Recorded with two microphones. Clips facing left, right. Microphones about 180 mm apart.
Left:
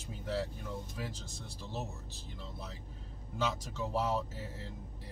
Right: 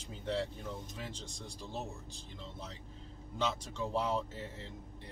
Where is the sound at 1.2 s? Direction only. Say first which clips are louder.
Right 1 dB; 5° left (ahead or behind).